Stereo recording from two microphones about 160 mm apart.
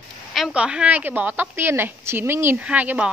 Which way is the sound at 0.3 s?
5° right (ahead or behind).